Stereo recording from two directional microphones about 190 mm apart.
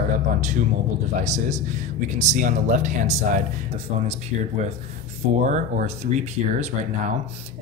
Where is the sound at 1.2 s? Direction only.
40° right (ahead or behind).